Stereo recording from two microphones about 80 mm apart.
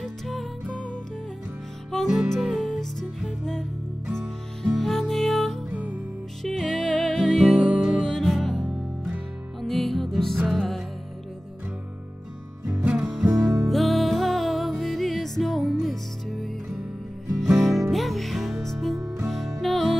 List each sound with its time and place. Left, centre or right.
0.0 s music: centre
2.4 s music: centre
4.6 s music: centre
5.7 s music: centre
6.4 s music: centre
8.0 s music: centre
8.6 s music: centre
9.6 s music: centre
12.7 s music: centre
13.3 s music: centre